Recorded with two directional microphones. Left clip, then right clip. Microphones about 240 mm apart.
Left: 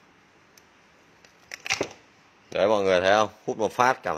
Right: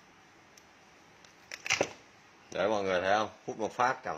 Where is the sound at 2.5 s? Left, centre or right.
Left.